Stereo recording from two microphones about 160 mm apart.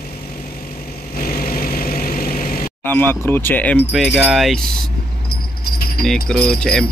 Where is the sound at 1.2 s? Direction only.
70° left (ahead or behind).